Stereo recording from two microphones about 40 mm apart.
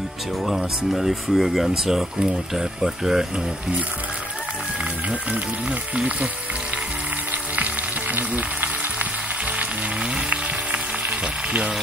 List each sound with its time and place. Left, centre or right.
0.5 s speech: centre
8.1 s frying: right